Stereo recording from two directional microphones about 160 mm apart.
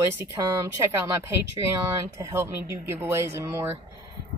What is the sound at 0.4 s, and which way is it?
Speech, 20° right (ahead or behind).